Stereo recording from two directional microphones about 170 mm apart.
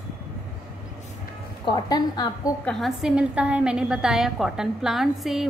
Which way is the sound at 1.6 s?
25° left (ahead or behind).